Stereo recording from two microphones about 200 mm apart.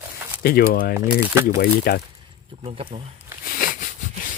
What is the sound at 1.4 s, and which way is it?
Speech, 50° left (ahead or behind).